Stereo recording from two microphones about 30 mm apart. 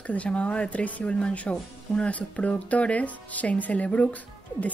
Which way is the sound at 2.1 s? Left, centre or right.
Left.